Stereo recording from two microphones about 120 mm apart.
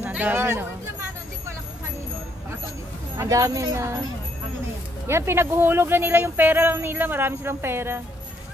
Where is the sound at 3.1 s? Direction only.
25° right (ahead or behind).